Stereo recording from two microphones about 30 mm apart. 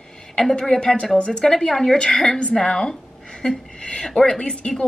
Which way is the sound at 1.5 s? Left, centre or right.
Centre.